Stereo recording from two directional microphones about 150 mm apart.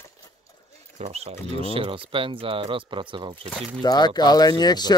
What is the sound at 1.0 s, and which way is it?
Speech, 45° right (ahead or behind).